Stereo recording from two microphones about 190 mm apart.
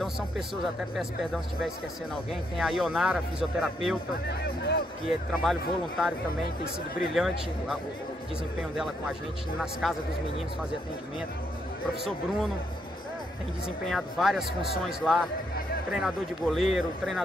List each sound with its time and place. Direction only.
0.9 s speech: centre (ahead or behind)
4.3 s speech: 60° left (ahead or behind)
5.3 s speech: centre (ahead or behind)
7.2 s speech: centre (ahead or behind)
9.6 s speech: centre (ahead or behind)
13.8 s speech: centre (ahead or behind)